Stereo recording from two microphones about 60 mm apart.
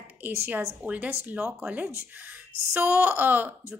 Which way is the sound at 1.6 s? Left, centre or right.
Right.